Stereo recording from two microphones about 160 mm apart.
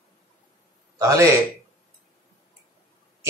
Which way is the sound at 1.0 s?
20° right (ahead or behind).